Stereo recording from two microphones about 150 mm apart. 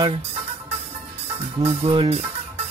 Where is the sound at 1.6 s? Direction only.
40° right (ahead or behind).